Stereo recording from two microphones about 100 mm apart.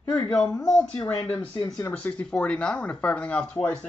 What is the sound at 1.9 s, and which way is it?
Speech, 15° left (ahead or behind).